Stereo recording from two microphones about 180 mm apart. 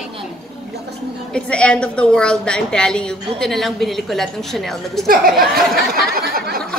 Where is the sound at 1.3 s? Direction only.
5° left (ahead or behind).